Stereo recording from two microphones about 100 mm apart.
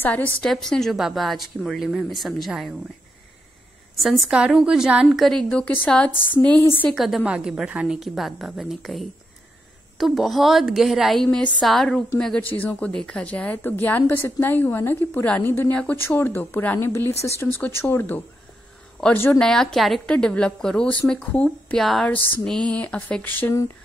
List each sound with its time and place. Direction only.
0.0 s a woman's voice: 15° left (ahead or behind)
0.4 s a woman's voice: 5° left (ahead or behind)
3.9 s a woman's voice: centre (ahead or behind)
5.9 s a woman's voice: 10° left (ahead or behind)
6.9 s a woman's voice: centre (ahead or behind)
11.2 s a woman's voice: 15° left (ahead or behind)
11.6 s a woman's voice: centre (ahead or behind)
12.4 s a woman's voice: 20° left (ahead or behind)
19.0 s a woman's voice: 5° left (ahead or behind)
21.8 s a woman's voice: centre (ahead or behind); by 23.5 s 20° left (ahead or behind)